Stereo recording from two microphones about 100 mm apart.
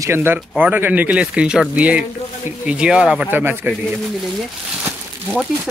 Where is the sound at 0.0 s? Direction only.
25° right (ahead or behind); by 3.3 s 10° right (ahead or behind).